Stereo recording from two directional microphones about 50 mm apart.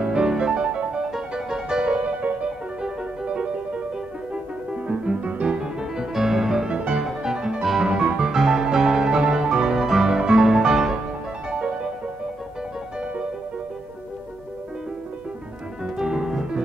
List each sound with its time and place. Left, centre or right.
0.0 s music: centre
4.8 s music: right; by 6.7 s centre
6.7 s music: right
15.8 s music: centre